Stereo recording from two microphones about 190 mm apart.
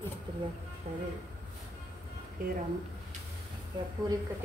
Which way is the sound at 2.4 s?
45° right (ahead or behind).